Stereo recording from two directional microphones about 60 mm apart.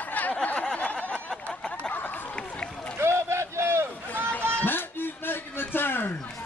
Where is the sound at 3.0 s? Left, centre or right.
Right.